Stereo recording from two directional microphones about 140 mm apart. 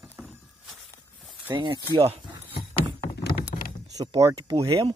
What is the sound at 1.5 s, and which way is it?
Speech, 35° right (ahead or behind).